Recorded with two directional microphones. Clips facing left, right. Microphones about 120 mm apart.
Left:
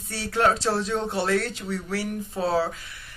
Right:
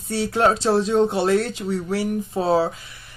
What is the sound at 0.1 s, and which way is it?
Speech, 20° right (ahead or behind).